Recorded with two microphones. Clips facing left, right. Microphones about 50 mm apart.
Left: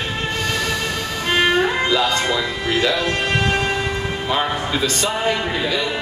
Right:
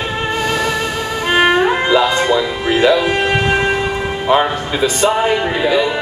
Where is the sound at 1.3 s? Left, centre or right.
Centre.